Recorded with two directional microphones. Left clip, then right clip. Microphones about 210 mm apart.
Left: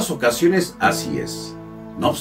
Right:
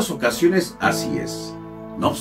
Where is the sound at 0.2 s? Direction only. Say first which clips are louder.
Left 2 dB; 5° right (ahead or behind).